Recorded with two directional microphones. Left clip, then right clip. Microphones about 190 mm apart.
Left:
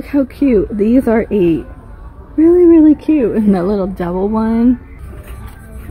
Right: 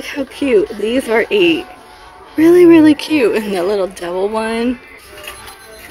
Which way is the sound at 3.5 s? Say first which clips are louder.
Even; 5° left (ahead or behind).